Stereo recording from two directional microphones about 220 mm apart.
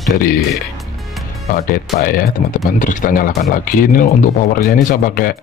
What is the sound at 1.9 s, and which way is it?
Speech, 40° left (ahead or behind).